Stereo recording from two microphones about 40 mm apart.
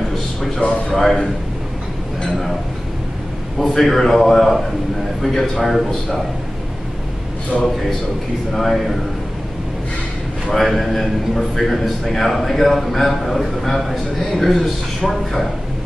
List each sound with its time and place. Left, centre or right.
0.8 s a man's voice: centre
3.5 s a man's voice: centre
7.5 s a man's voice: left
8.5 s a man's voice: centre
10.5 s a man's voice: centre